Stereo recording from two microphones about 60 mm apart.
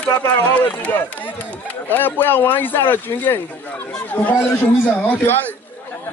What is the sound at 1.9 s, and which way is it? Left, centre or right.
Speech, left.